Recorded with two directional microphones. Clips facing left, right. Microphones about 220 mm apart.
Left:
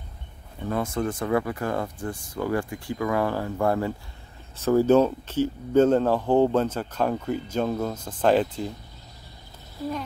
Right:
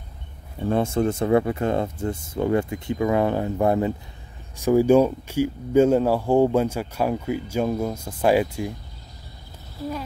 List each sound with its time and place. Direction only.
0.7 s speech: 25° right (ahead or behind); by 8.7 s 10° right (ahead or behind)